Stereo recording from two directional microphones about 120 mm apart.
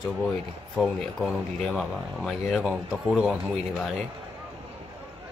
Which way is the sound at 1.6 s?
5° left (ahead or behind).